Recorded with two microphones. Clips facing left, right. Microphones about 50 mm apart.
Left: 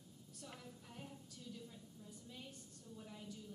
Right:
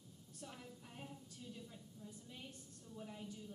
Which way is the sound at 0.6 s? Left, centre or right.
Centre.